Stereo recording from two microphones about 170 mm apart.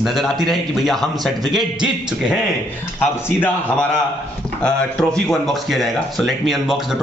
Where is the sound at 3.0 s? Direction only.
10° left (ahead or behind).